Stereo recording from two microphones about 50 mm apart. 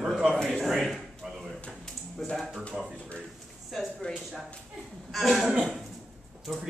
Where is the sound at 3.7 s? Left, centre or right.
Centre.